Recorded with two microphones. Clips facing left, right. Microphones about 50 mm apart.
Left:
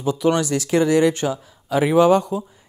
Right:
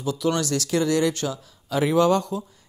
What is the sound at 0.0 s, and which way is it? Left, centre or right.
Speech, left.